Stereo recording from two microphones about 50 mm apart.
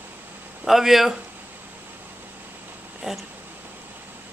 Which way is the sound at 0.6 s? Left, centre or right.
Centre.